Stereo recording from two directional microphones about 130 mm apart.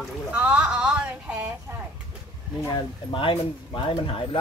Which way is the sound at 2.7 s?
40° left (ahead or behind).